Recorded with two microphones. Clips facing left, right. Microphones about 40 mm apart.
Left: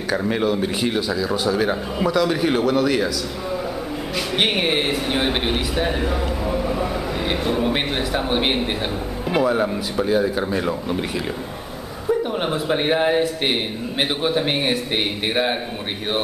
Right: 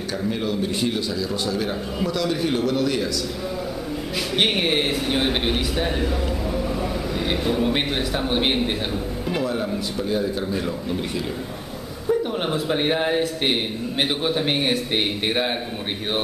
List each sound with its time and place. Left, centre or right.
0.1 s a man's voice: left
0.8 s a man's voice: centre
4.4 s a man's voice: centre
9.3 s a man's voice: left
12.1 s a man's voice: centre